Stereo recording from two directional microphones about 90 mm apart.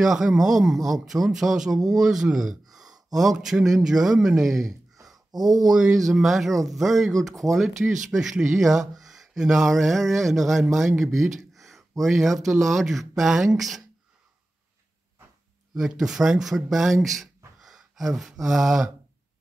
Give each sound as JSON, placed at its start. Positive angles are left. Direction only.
{"t": 0.0, "sound": "speech", "side_deg": -5}
{"t": 5.1, "sound": "a sound", "side_deg": -50}
{"t": 5.7, "sound": "speech", "side_deg": -5}
{"t": 11.1, "sound": "gasp", "side_deg": 0}
{"t": 12.0, "sound": "speech", "side_deg": 0}
{"t": 15.7, "sound": "speech", "side_deg": -5}
{"t": 17.6, "sound": "gasp", "side_deg": -5}